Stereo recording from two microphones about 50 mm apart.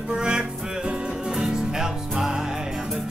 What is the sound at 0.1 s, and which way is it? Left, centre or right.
Music, centre.